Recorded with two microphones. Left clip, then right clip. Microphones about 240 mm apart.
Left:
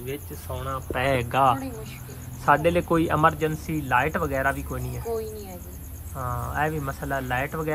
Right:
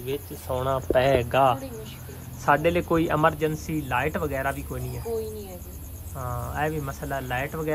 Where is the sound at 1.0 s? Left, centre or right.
Centre.